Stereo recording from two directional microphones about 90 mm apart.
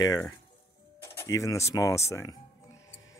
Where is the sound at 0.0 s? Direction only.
45° left (ahead or behind).